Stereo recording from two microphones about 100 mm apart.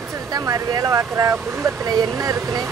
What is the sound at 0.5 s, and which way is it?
Speech, 35° right (ahead or behind).